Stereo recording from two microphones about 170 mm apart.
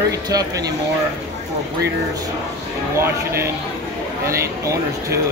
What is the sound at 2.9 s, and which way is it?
Speech, 15° right (ahead or behind).